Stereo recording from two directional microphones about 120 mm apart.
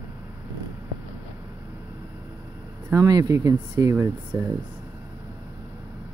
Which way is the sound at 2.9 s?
30° right (ahead or behind).